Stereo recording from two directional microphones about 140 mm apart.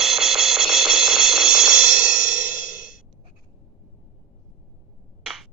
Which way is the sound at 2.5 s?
80° left.